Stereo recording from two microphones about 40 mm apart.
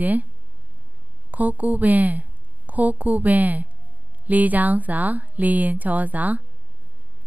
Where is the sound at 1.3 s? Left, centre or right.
Right.